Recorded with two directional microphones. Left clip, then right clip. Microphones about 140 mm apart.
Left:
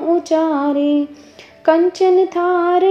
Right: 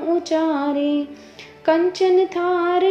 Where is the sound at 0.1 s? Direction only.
35° left (ahead or behind).